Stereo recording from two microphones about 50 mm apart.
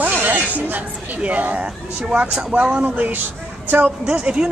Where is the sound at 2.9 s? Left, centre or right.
Right.